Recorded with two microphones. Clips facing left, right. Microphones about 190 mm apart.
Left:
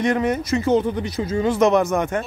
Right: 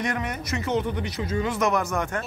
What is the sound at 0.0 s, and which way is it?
Speech, 30° left (ahead or behind).